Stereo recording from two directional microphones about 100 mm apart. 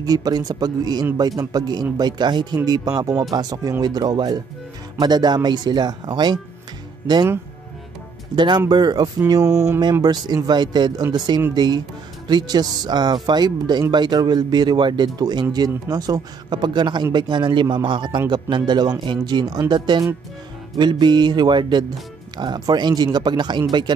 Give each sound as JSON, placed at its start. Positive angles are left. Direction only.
{"t": 0.0, "sound": "speech", "side_deg": -40}
{"t": 8.4, "sound": "speech", "side_deg": -50}
{"t": 9.3, "sound": "speech", "side_deg": -30}